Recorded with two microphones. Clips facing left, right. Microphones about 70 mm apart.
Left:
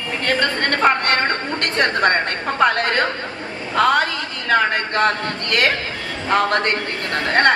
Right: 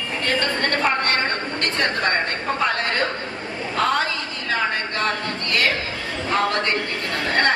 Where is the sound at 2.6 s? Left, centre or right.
Left.